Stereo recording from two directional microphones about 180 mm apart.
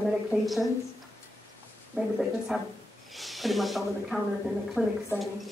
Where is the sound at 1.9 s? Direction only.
Centre (ahead or behind).